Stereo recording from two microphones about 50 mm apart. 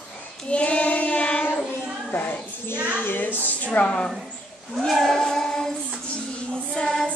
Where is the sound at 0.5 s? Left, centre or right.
Left.